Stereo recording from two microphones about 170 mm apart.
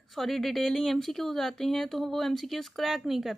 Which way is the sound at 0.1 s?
Centre (ahead or behind).